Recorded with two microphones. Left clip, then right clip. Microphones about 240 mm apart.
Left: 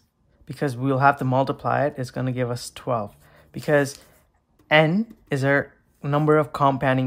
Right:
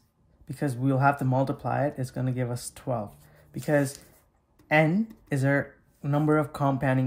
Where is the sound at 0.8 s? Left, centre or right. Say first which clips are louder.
Left 5 dB; centre.